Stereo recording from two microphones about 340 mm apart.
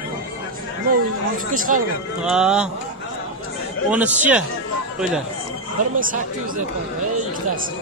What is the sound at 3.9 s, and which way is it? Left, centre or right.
Speech, centre.